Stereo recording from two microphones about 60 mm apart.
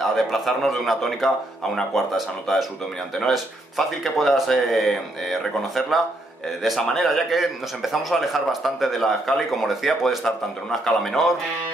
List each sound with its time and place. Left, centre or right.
0.0 s speech: centre